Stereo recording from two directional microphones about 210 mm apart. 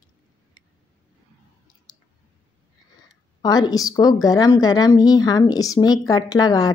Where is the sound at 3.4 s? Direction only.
20° left (ahead or behind).